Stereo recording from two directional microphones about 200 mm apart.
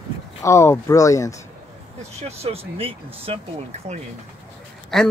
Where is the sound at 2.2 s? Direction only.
30° right (ahead or behind).